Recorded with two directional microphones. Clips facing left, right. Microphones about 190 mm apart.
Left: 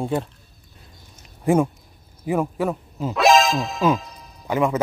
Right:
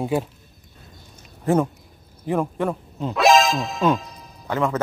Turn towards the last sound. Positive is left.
turn(degrees=15)  # may be behind; listen again after turning